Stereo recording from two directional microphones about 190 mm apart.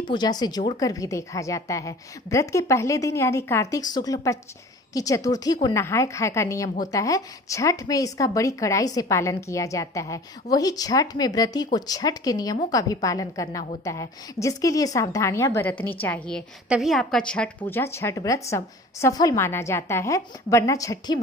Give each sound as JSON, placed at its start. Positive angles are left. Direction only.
{"t": 0.1, "sound": "a woman's voice", "side_deg": 20}